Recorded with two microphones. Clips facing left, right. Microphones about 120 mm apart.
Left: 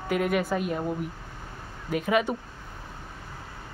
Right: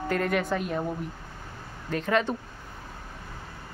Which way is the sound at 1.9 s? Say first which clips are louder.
Left 1 dB; 10° left (ahead or behind).